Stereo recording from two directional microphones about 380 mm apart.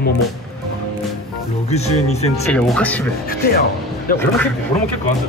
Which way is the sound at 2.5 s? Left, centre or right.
Centre.